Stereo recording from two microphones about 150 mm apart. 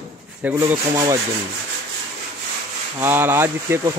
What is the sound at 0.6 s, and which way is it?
Speech, 20° right (ahead or behind).